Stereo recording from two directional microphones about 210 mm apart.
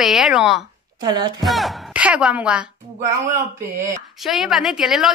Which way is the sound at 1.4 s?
Centre (ahead or behind).